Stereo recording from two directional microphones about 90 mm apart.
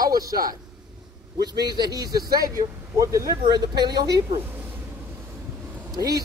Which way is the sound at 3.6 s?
50° right (ahead or behind).